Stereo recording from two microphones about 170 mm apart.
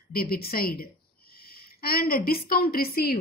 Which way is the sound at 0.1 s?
60° left (ahead or behind).